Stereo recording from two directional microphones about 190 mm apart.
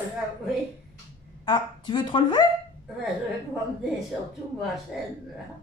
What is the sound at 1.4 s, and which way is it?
Speech, 25° left (ahead or behind).